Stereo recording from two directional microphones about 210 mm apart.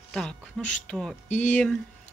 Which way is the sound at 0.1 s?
5° left (ahead or behind).